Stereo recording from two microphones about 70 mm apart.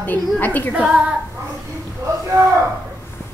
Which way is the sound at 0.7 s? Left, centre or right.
Centre.